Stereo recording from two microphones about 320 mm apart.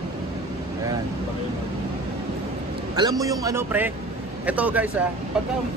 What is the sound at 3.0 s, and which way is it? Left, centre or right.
A man's voice, centre.